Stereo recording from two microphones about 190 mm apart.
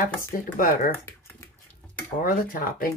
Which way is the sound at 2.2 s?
45° left (ahead or behind).